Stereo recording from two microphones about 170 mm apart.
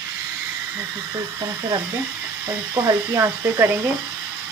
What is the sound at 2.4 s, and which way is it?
Speech, 15° right (ahead or behind).